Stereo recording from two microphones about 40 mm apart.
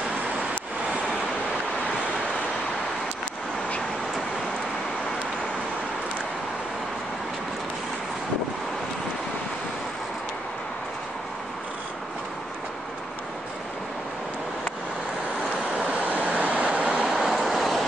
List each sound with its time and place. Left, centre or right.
15.9 s vehicle: right
16.9 s vehicle: centre